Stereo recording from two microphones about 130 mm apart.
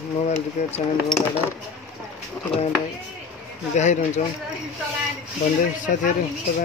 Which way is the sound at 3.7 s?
65° left (ahead or behind).